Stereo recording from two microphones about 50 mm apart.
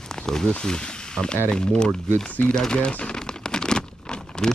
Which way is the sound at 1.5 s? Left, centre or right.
Centre.